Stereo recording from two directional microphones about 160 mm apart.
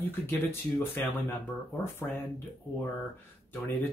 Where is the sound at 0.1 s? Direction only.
15° left (ahead or behind).